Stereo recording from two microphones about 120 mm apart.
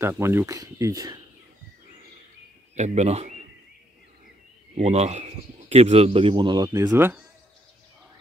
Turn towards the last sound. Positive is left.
turn(degrees=-15)  # may be behind; listen again after turning